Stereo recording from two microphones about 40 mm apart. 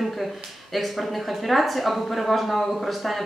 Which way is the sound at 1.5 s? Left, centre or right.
Centre.